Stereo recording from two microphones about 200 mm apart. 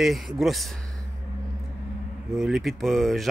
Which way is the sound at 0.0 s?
Centre (ahead or behind).